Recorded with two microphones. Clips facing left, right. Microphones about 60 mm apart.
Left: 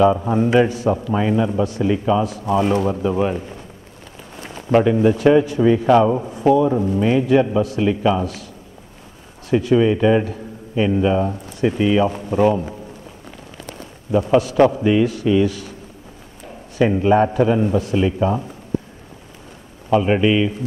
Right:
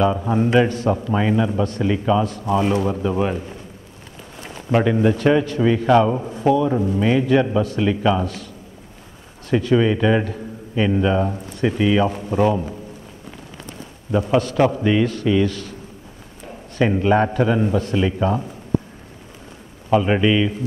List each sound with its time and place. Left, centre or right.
0.0 s a man's voice: centre
1.0 s speech: centre
1.3 s speech: centre
4.6 s a man's voice: centre
6.4 s a man's voice: centre
6.8 s a man's voice: centre
9.5 s a man's voice: centre
14.1 s a man's voice: centre
16.7 s a man's voice: centre
20.0 s a man's voice: centre